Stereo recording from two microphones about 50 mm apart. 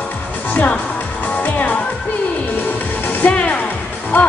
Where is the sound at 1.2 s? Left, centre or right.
Left.